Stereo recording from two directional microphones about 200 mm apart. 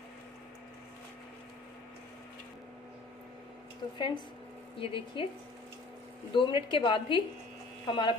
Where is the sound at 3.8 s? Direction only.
25° left (ahead or behind).